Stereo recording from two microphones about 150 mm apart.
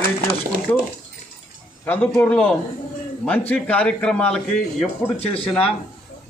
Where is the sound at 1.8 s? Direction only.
10° left (ahead or behind).